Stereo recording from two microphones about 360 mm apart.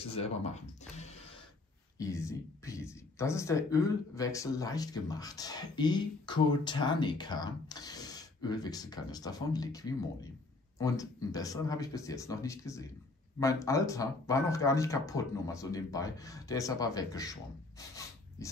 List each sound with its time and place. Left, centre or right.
0.0 s speech: centre